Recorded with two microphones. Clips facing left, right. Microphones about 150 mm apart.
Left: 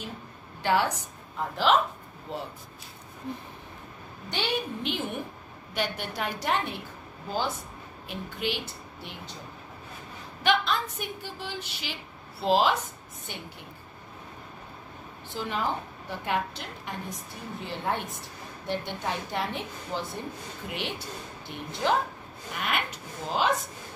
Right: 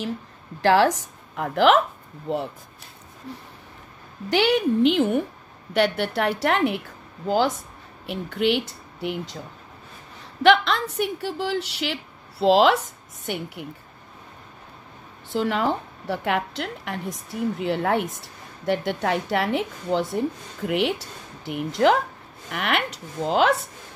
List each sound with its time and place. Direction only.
0.6 s a woman's voice: 90° right; by 1.8 s 75° right (ahead or behind)
4.3 s a woman's voice: 85° right
8.1 s a woman's voice: 80° right
9.0 s a woman's voice: 90° right
10.4 s a woman's voice: 85° right
15.3 s a woman's voice: 90° right
22.5 s speech: 75° right (ahead or behind)